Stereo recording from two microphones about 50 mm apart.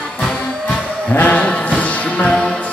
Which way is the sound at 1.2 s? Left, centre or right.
Left.